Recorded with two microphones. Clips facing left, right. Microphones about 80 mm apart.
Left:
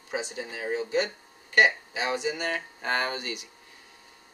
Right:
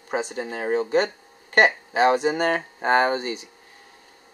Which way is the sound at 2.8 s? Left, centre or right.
Right.